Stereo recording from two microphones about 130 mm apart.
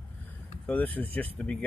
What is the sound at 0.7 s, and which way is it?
Speech, 15° left (ahead or behind).